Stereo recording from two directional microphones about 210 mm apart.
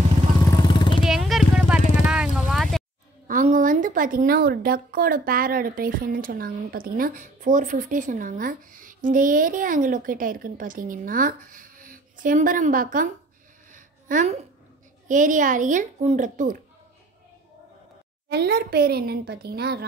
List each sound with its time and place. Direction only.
0.6 s vehicle: 20° left (ahead or behind)
1.0 s a sound: centre (ahead or behind)
2.0 s vehicle: 5° right (ahead or behind)
3.3 s a woman's voice: 40° right (ahead or behind)
13.7 s a sound: 40° right (ahead or behind)
15.0 s a woman's voice: 35° right (ahead or behind)
18.3 s a woman's voice: 50° right (ahead or behind)